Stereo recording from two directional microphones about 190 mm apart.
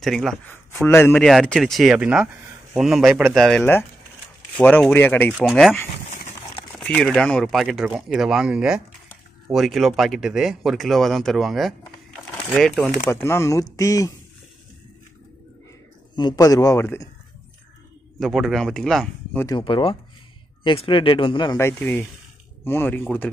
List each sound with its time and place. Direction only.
0.0 s speech: centre (ahead or behind)
0.7 s speech: 10° left (ahead or behind); by 3.4 s 5° right (ahead or behind)
3.4 s speech: 10° left (ahead or behind)
5.3 s speech: centre (ahead or behind)
13.1 s speech: 15° left (ahead or behind)
16.2 s speech: 20° left (ahead or behind)
18.2 s speech: centre (ahead or behind)
19.4 s speech: 25° left (ahead or behind)
21.5 s speech: 10° left (ahead or behind)